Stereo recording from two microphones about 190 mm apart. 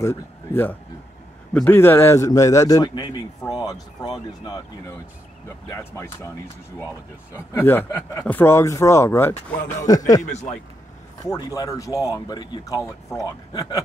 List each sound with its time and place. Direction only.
0.0 s a man's voice: 15° left (ahead or behind)
7.3 s a man's voice: 10° left (ahead or behind)
10.2 s a man's voice: 40° left (ahead or behind)
11.2 s speech: 20° left (ahead or behind)